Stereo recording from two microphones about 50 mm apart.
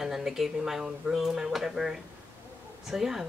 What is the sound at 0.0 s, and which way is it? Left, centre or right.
Speech, centre.